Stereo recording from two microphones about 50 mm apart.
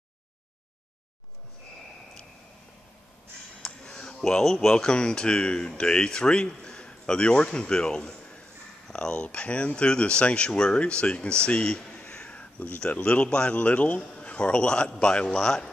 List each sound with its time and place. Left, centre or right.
3.6 s a man's voice: centre